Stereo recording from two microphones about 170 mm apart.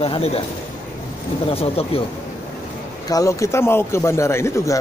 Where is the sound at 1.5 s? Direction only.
35° left (ahead or behind).